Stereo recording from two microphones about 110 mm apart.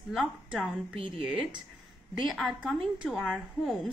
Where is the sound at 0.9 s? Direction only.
55° right (ahead or behind).